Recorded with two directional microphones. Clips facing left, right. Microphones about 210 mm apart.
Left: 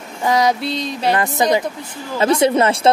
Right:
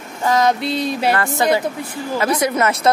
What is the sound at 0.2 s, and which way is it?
Speech, 15° left (ahead or behind).